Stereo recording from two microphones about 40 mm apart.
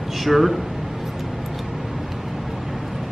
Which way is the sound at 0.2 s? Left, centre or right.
Centre.